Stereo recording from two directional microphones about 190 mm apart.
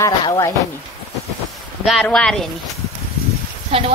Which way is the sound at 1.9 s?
Centre (ahead or behind).